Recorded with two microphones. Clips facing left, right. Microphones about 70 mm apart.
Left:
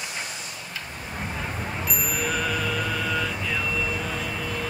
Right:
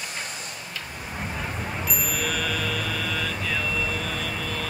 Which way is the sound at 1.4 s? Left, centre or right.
Centre.